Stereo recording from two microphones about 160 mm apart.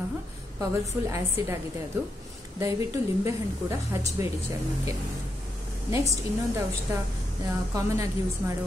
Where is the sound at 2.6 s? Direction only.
20° right (ahead or behind).